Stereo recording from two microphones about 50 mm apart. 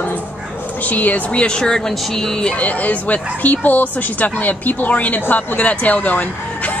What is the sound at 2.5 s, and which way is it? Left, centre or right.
Speech, left.